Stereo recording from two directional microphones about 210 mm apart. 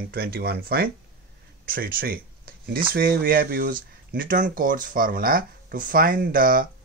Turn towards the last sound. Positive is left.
turn(degrees=-40)  # may be behind; listen again after turning